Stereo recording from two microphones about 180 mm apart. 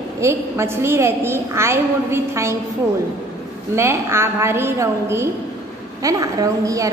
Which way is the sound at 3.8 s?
15° right (ahead or behind).